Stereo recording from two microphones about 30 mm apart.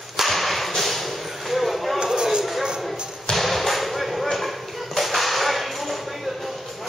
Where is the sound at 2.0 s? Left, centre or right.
Right.